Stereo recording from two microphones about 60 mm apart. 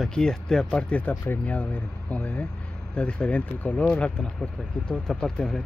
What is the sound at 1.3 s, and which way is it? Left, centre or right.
Speech, left.